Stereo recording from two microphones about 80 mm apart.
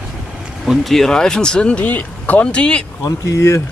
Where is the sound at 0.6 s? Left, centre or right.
Centre.